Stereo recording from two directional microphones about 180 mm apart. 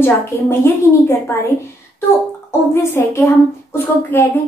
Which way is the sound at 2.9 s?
15° left (ahead or behind).